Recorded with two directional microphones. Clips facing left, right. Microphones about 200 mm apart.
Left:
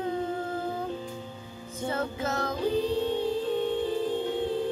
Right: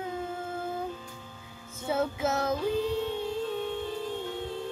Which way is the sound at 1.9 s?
5° right (ahead or behind).